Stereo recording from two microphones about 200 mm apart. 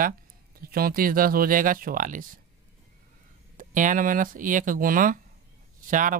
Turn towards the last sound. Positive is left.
turn(degrees=-40)  # may be behind; listen again after turning